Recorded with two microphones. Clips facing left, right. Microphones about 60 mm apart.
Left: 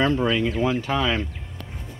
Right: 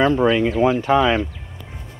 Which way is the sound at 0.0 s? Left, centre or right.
Centre.